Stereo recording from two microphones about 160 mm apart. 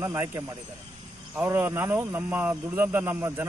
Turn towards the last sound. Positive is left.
turn(degrees=-15)  # may be behind; listen again after turning